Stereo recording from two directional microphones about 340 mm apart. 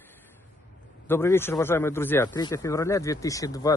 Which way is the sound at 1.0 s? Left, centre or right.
Centre.